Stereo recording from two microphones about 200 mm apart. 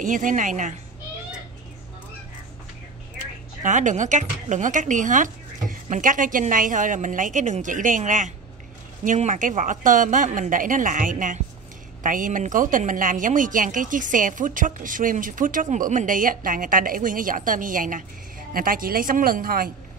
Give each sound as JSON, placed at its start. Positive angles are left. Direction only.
{"t": 0.0, "sound": "speech", "side_deg": -40}
{"t": 3.6, "sound": "a woman's voice", "side_deg": -40}